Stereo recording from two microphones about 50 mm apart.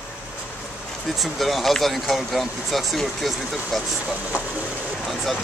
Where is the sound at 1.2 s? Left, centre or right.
Centre.